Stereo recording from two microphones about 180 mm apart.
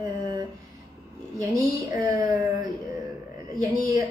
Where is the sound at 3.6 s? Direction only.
20° right (ahead or behind).